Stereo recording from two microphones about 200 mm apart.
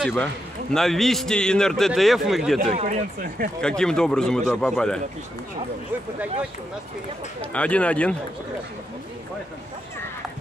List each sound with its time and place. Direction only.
0.0 s a man's voice: 5° left (ahead or behind)
2.6 s speech: 35° right (ahead or behind)
3.6 s a man's voice: 5° left (ahead or behind)
7.5 s speech: 5° left (ahead or behind)